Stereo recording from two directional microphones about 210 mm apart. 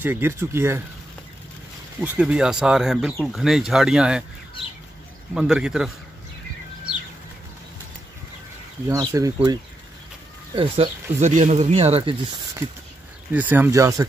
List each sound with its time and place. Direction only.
0.0 s speech: 10° right (ahead or behind)
2.0 s speech: 5° right (ahead or behind)
5.3 s speech: 5° right (ahead or behind)
8.8 s speech: 15° right (ahead or behind)
10.5 s speech: 25° right (ahead or behind)
13.3 s speech: 10° right (ahead or behind)